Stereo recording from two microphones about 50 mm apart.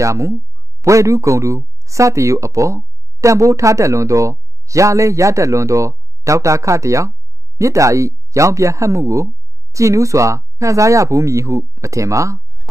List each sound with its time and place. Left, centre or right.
0.0 s speech: right